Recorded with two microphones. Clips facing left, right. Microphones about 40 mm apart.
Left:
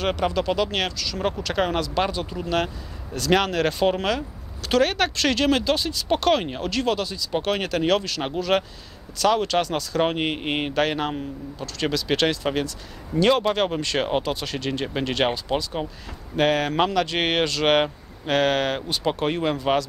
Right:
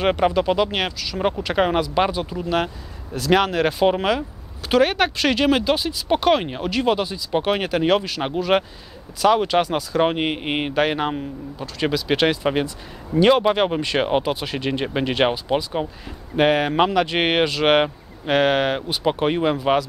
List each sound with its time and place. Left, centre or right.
0.0 s speech: right
2.2 s speech: centre